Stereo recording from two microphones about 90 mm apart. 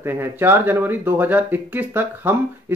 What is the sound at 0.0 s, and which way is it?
Speech, 25° right (ahead or behind).